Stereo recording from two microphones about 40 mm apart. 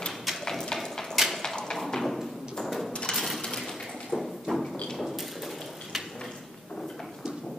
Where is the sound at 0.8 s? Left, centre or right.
Centre.